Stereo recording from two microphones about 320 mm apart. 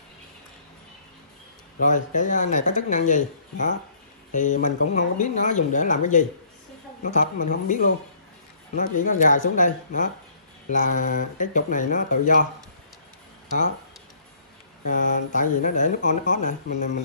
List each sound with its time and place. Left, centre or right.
1.9 s speech: left
14.9 s speech: left